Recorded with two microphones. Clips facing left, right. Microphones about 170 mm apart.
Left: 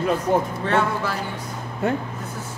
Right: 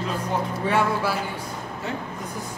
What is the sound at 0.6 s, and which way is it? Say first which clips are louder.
Speech: even; 10° right (ahead or behind).